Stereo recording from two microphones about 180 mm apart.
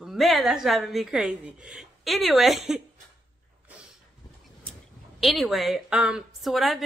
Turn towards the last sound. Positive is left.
turn(degrees=0)  # may be behind; listen again after turning